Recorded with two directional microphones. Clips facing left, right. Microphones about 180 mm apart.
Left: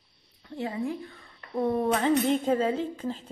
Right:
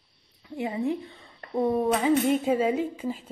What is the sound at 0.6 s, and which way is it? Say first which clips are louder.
A woman's voice: right 3 dB; 20° right (ahead or behind).